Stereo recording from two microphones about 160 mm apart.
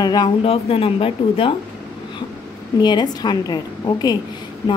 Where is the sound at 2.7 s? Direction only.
25° left (ahead or behind).